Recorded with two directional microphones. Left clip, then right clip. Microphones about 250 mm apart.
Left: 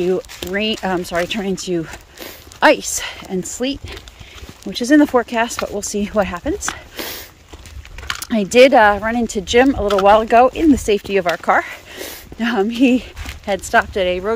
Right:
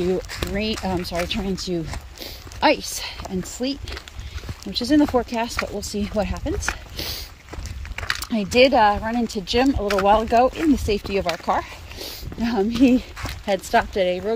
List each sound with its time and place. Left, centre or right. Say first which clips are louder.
0.0 s speech: left 4 dB; centre
8.5 s speech: left 6 dB; centre
9.8 s speech: left 5 dB; left
10.0 s speech: left 6 dB; centre